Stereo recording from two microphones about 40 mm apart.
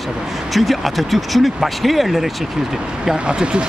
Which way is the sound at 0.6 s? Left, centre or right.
Centre.